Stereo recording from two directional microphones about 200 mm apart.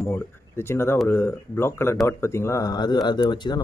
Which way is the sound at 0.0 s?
10° left (ahead or behind).